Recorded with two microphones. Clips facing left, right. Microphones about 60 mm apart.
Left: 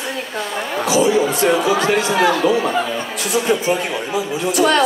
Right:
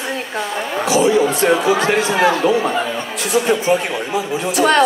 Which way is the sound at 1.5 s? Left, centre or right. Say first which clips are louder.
Right 1 dB; centre.